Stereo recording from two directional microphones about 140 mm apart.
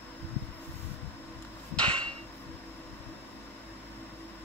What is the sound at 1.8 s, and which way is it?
Hammer, 35° right (ahead or behind).